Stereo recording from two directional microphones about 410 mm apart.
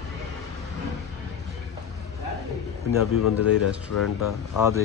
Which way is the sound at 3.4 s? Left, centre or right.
Left.